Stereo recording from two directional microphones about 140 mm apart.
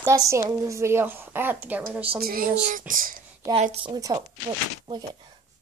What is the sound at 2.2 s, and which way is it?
Speech, 90° right.